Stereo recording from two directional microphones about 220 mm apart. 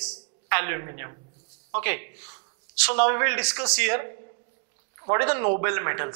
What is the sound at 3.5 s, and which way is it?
A man's voice, 25° right (ahead or behind).